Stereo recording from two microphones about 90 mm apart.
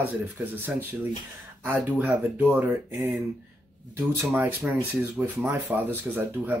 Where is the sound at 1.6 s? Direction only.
15° right (ahead or behind).